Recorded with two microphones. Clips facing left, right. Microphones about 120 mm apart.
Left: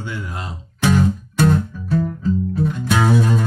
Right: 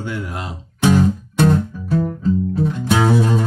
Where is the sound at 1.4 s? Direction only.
25° right (ahead or behind).